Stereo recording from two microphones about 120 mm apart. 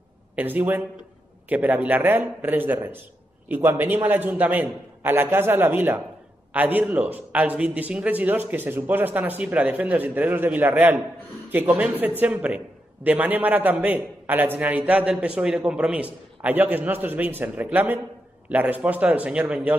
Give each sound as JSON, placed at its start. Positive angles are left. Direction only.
{"t": 0.4, "sound": "a man's voice", "side_deg": -15}